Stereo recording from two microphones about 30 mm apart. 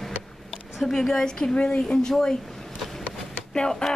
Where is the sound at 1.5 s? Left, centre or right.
Left.